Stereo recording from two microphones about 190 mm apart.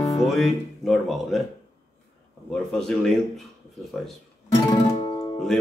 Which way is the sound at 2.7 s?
5° left (ahead or behind).